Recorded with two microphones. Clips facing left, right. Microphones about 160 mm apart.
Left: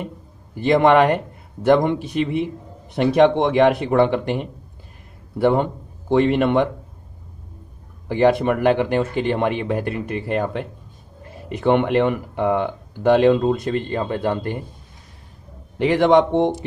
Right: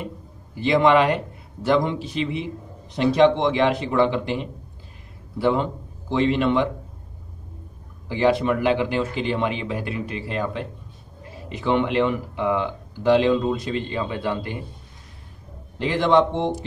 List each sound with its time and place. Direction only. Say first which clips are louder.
0.6 s a man's voice: left 3 dB; 50° left (ahead or behind)
8.1 s speech: left 3 dB; 50° left (ahead or behind)
15.8 s a man's voice: left 4 dB; 60° left (ahead or behind)